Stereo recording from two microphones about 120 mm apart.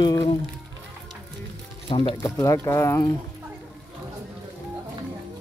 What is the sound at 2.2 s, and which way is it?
Speech, 30° left (ahead or behind).